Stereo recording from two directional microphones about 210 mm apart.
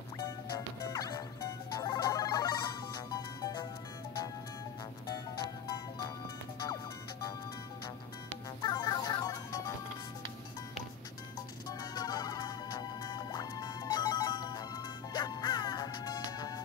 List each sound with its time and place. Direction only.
0.9 s music: 20° left (ahead or behind)
6.7 s music: 20° left (ahead or behind)
8.6 s music: 20° left (ahead or behind)
11.8 s music: 20° left (ahead or behind)